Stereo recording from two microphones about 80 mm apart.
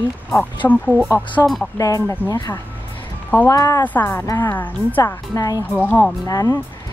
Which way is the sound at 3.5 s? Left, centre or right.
Left.